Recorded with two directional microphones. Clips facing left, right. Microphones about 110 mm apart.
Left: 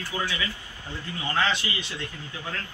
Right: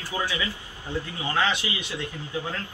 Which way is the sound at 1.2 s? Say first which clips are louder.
Even; 15° right (ahead or behind).